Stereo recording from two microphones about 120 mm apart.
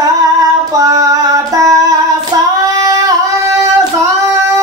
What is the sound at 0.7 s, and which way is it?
Child singing, 30° right (ahead or behind).